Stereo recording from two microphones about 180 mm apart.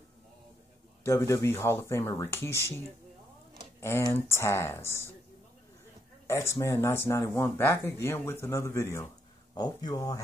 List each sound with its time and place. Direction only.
1.0 s speech: 15° left (ahead or behind)
3.8 s speech: 15° left (ahead or behind)
6.2 s speech: 15° left (ahead or behind)